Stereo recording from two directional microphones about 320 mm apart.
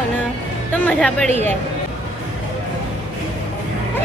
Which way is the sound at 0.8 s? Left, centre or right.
Centre.